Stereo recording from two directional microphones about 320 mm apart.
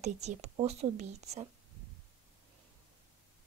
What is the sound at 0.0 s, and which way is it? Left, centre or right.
A woman's voice, right.